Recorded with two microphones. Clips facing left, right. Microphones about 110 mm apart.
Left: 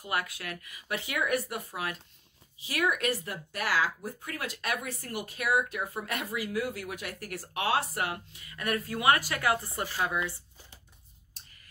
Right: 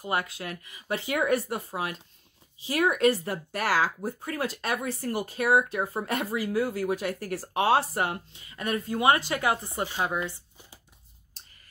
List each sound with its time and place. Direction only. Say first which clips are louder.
0.0 s speech: right 4 dB; 30° right (ahead or behind)